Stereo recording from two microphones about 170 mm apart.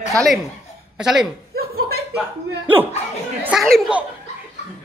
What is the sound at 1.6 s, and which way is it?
Chuckle, 65° right (ahead or behind).